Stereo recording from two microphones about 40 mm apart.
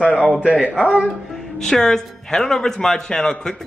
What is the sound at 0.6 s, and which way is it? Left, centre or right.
Speech, left.